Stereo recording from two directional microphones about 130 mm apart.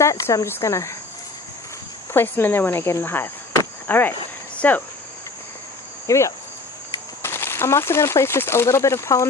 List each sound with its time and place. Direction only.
0.0 s speech: 25° left (ahead or behind)
2.1 s speech: 15° left (ahead or behind)
6.0 s speech: 25° left (ahead or behind)